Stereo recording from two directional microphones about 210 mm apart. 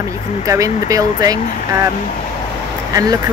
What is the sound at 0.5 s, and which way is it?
Speech, 15° right (ahead or behind).